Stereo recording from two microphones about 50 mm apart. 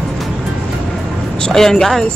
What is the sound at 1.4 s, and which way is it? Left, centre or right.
Speech, centre.